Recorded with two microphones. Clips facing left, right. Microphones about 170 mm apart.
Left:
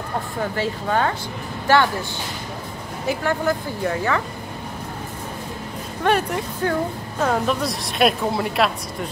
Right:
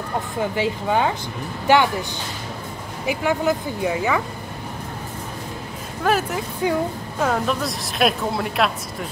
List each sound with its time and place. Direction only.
0.4 s speech: 15° right (ahead or behind)
3.1 s speech: 15° right (ahead or behind)
6.0 s a woman's voice: centre (ahead or behind)
7.2 s a woman's voice: centre (ahead or behind)